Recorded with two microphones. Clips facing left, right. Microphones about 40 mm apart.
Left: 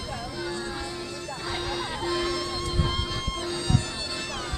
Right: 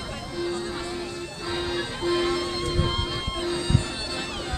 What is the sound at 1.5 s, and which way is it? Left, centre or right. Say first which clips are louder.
Music: right 3 dB; centre.